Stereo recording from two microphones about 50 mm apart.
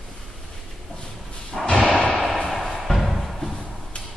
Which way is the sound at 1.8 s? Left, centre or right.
Centre.